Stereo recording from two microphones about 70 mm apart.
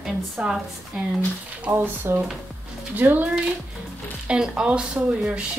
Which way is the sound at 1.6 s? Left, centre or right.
Right.